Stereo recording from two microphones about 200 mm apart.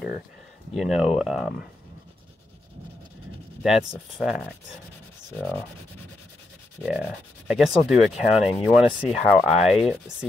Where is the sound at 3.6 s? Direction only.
Centre (ahead or behind).